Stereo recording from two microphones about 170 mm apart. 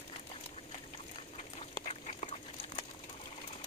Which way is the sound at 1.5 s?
35° left (ahead or behind).